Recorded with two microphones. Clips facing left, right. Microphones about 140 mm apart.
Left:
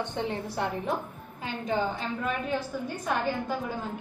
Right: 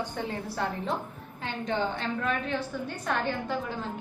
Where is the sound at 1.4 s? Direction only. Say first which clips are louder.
Left 1 dB; 5° left (ahead or behind).